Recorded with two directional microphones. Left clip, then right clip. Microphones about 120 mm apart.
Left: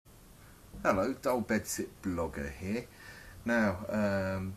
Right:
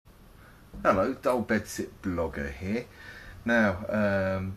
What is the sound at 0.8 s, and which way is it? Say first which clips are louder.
Speech: right 5 dB; 20° left (ahead or behind).